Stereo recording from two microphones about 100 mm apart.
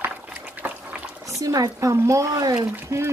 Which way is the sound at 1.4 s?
35° right (ahead or behind).